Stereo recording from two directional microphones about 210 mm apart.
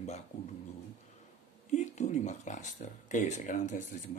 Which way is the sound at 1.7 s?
35° left (ahead or behind).